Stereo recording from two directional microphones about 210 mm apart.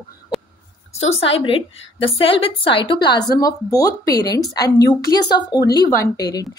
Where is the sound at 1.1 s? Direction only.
25° left (ahead or behind).